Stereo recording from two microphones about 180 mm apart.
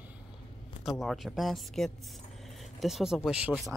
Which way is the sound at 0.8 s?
Centre (ahead or behind).